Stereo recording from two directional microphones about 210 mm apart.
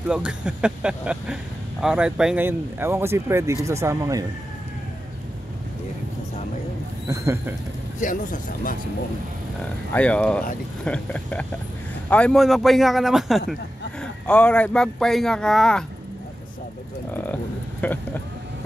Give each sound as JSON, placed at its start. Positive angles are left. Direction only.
{"t": 0.1, "sound": "speech", "side_deg": -5}
{"t": 7.1, "sound": "speech", "side_deg": -15}
{"t": 8.0, "sound": "speech", "side_deg": 40}
{"t": 9.9, "sound": "speech", "side_deg": 5}
{"t": 17.1, "sound": "speech", "side_deg": 10}